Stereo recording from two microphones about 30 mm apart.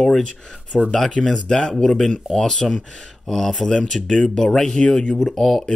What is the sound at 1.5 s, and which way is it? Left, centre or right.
Speech, left.